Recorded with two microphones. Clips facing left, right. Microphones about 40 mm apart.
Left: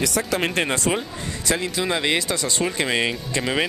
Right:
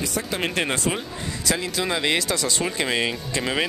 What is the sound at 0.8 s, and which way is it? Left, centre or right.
Speech, left.